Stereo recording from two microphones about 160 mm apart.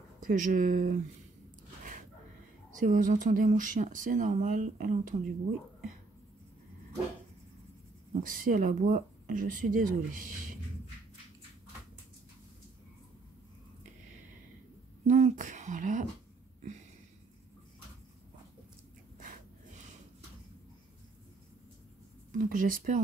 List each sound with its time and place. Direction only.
0.2 s speech: 55° right (ahead or behind)
2.8 s speech: 55° right (ahead or behind)
8.2 s speech: 55° right (ahead or behind)
15.0 s speech: 45° right (ahead or behind)
19.1 s snort: 55° right (ahead or behind)
22.3 s speech: 55° right (ahead or behind)